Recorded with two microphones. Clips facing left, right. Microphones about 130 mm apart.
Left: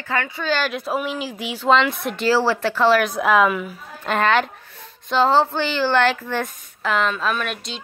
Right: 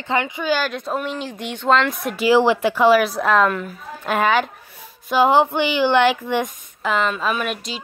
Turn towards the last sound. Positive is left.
turn(degrees=-5)  # may be behind; listen again after turning